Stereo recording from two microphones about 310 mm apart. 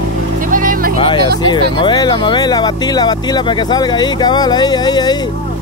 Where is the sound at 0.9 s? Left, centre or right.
Centre.